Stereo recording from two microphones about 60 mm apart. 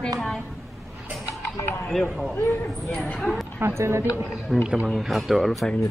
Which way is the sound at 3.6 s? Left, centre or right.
Right.